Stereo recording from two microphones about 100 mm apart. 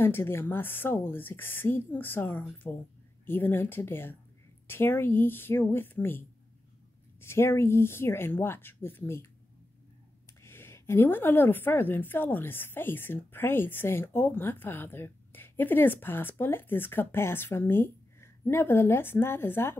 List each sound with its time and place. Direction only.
0.0 s a woman's voice: 25° left (ahead or behind)
10.4 s a woman's voice: 25° left (ahead or behind)